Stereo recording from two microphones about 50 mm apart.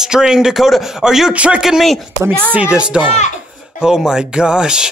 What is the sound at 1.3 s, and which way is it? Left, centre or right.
Speech, right.